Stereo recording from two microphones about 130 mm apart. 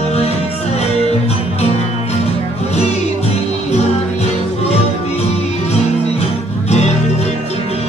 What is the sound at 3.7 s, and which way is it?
Music, 60° left (ahead or behind).